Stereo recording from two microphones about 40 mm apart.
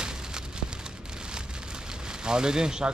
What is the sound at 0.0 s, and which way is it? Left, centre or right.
Rain on surface, centre.